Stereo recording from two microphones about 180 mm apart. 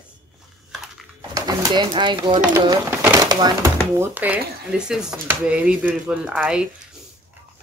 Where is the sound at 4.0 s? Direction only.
10° right (ahead or behind).